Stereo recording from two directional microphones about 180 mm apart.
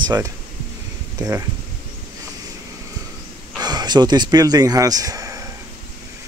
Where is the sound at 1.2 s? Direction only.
15° right (ahead or behind).